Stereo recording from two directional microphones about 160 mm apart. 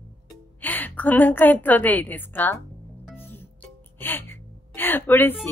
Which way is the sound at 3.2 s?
15° left (ahead or behind).